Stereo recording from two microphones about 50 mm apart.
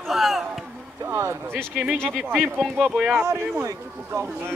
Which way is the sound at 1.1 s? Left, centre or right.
Right.